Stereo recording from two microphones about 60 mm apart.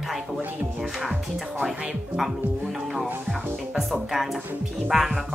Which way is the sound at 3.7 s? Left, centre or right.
Centre.